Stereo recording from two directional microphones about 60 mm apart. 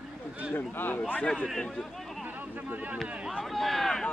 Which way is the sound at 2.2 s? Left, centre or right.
Right.